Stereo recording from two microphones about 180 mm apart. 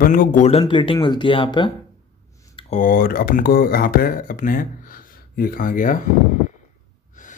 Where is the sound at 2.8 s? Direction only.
50° left (ahead or behind).